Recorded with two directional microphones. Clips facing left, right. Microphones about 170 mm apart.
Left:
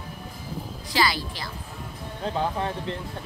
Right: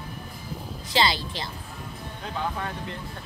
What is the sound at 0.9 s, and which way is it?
Speech, 25° right (ahead or behind).